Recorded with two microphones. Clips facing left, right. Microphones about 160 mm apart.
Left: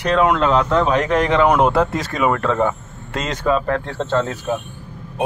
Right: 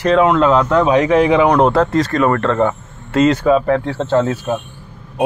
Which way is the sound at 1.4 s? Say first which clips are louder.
Right 3 dB; 5° left (ahead or behind).